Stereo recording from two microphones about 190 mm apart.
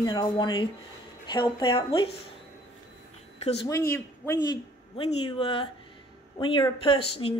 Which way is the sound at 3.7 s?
15° left (ahead or behind).